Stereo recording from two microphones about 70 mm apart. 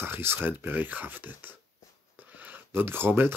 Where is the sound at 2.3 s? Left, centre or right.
Right.